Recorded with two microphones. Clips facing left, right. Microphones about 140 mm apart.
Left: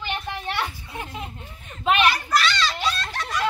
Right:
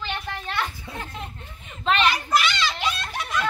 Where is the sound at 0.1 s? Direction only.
15° left (ahead or behind).